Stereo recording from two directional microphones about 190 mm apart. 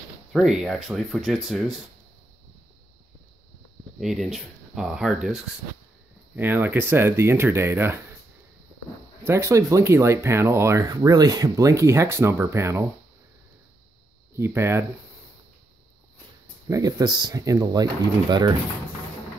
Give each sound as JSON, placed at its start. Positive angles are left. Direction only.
{"t": 0.3, "sound": "speech", "side_deg": 0}
{"t": 4.0, "sound": "speech", "side_deg": 0}
{"t": 9.2, "sound": "speech", "side_deg": -15}
{"t": 14.3, "sound": "speech", "side_deg": -15}
{"t": 16.6, "sound": "speech", "side_deg": -20}